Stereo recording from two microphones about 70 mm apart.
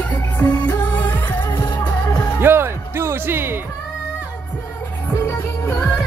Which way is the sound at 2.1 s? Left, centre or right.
Left.